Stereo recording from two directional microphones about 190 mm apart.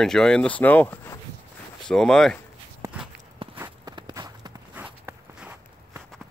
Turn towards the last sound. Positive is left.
turn(degrees=-10)  # may be behind; listen again after turning